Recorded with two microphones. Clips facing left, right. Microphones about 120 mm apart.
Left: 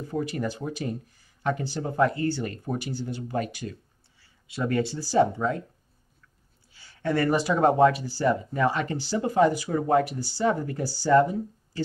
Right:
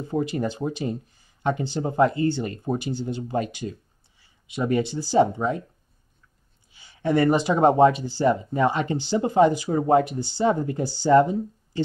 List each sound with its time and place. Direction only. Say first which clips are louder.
0.0 s speech: right 4 dB; 25° right (ahead or behind)
6.7 s speech: right 4 dB; 20° right (ahead or behind)